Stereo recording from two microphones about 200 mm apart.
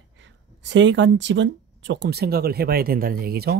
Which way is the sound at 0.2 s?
65° right (ahead or behind).